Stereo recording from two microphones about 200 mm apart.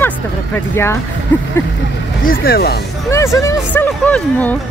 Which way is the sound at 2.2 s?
50° left (ahead or behind).